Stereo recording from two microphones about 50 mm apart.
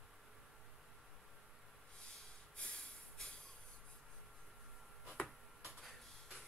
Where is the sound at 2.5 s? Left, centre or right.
Centre.